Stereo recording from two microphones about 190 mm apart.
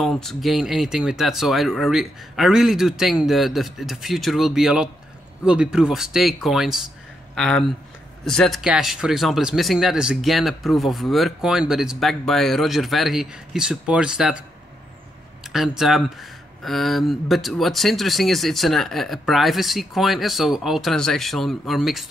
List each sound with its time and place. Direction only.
0.0 s speech: centre (ahead or behind)
15.4 s speech: centre (ahead or behind)